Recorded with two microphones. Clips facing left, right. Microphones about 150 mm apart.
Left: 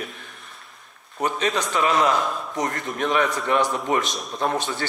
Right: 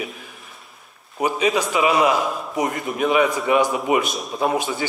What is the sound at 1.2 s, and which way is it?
A man's voice, 10° right (ahead or behind).